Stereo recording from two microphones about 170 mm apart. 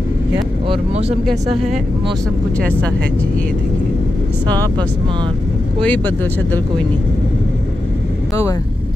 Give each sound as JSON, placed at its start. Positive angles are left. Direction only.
{"t": 0.7, "sound": "speech", "side_deg": -35}
{"t": 5.8, "sound": "speech", "side_deg": 10}